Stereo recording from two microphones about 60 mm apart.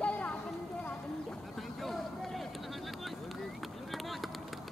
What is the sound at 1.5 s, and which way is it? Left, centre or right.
Vehicle, centre.